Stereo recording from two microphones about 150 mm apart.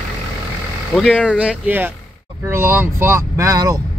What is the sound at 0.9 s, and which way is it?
Speech, centre (ahead or behind).